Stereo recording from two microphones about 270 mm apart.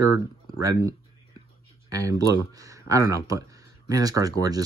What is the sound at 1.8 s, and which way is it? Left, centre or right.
Speech, centre.